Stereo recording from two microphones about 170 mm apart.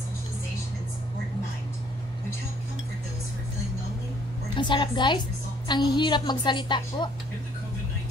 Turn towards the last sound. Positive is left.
turn(degrees=25)  # may be behind; listen again after turning